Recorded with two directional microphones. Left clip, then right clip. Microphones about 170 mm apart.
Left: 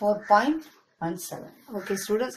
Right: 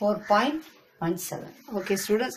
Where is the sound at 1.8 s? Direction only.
15° right (ahead or behind).